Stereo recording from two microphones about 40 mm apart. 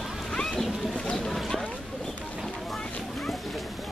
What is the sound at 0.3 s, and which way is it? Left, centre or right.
Boat, centre.